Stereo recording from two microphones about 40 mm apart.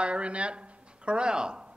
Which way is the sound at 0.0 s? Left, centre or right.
Right.